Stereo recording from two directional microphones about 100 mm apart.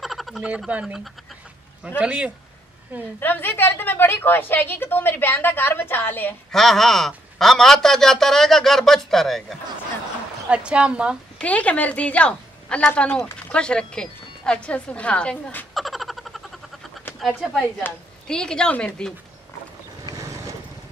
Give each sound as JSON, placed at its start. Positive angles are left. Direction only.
{"t": 0.0, "sound": "a sound", "side_deg": 0}
{"t": 0.7, "sound": "speech", "side_deg": -10}
{"t": 3.2, "sound": "a woman's voice", "side_deg": 20}
{"t": 6.5, "sound": "a man's voice", "side_deg": 5}
{"t": 10.5, "sound": "speech", "side_deg": -10}
{"t": 11.3, "sound": "a woman's voice", "side_deg": 15}
{"t": 15.7, "sound": "a sound", "side_deg": 0}
{"t": 18.2, "sound": "a woman's voice", "side_deg": 10}